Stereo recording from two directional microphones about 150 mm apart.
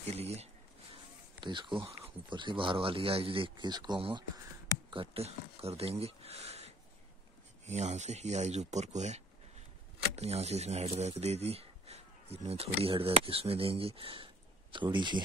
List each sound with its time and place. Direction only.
0.1 s speech: 45° right (ahead or behind)
1.4 s speech: 30° right (ahead or behind)